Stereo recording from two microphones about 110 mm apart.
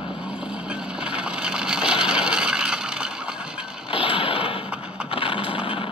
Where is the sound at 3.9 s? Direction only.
50° left (ahead or behind).